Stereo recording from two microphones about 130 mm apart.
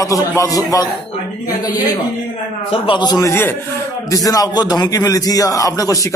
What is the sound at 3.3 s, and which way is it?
A man's voice, 15° left (ahead or behind).